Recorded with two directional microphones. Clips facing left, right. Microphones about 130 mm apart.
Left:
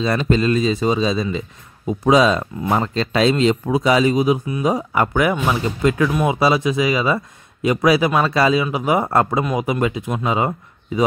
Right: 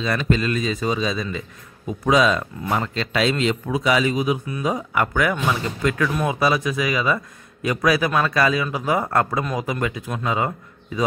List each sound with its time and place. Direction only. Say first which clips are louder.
0.0 s a man's voice: left 4 dB; 35° left (ahead or behind)
4.5 s a man's voice: left 4 dB; 20° left (ahead or behind)
4.7 s a man's voice: left 3 dB; 30° left (ahead or behind)